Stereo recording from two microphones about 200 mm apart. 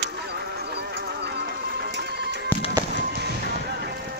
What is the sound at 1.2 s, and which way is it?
Music, 55° right (ahead or behind).